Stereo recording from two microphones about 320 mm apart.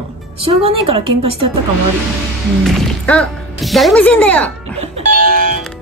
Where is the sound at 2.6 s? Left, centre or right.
Centre.